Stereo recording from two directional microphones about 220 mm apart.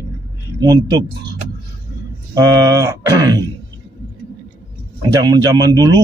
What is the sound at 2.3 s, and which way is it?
Speech, 15° right (ahead or behind).